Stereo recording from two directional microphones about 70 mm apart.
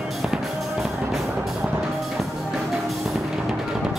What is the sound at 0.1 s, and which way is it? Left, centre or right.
Music, centre.